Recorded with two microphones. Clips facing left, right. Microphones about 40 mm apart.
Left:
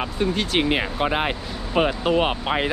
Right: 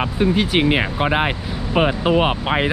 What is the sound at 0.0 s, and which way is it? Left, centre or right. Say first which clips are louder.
Speech: right 5 dB; centre.